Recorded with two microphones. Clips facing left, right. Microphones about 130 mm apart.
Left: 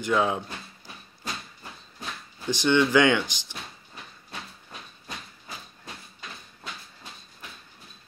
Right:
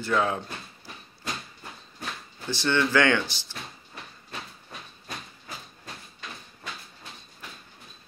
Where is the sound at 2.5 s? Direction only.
15° left (ahead or behind).